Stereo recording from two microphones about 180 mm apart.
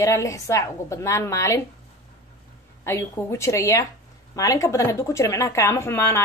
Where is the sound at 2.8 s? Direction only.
15° left (ahead or behind).